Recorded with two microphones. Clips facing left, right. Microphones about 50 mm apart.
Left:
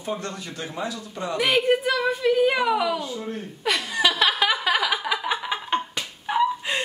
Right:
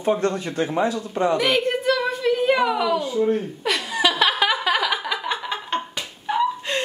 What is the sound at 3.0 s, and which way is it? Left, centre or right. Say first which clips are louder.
Speech: right 10 dB; centre.